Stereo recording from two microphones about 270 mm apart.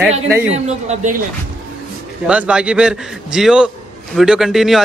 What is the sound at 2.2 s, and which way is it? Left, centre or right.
Speech, centre.